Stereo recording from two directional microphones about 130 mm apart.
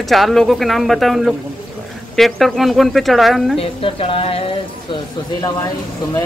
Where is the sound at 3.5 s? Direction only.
45° left (ahead or behind).